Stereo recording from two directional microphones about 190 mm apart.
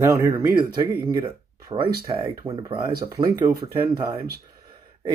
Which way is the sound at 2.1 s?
15° right (ahead or behind).